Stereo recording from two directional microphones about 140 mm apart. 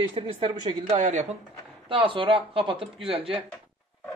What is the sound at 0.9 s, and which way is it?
Speech, 60° right (ahead or behind).